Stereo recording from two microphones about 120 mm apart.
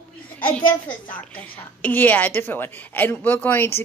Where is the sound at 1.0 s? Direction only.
10° left (ahead or behind).